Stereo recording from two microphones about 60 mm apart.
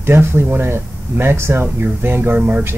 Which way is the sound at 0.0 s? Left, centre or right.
Right.